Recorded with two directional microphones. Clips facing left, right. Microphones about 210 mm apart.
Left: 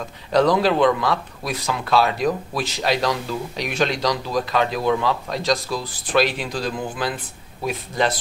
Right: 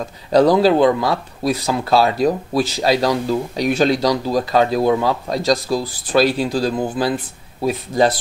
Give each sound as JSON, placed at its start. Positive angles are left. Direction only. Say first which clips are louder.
{"t": 0.3, "sound": "speech", "louder": "right 5 dB", "side_deg": -35}